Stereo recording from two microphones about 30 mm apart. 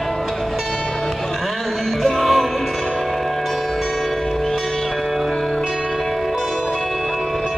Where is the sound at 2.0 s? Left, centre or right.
Centre.